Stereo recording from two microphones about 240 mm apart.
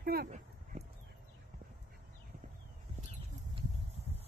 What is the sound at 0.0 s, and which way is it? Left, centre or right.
Speech, right.